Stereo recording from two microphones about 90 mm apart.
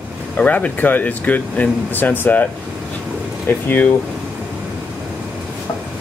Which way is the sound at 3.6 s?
20° left (ahead or behind).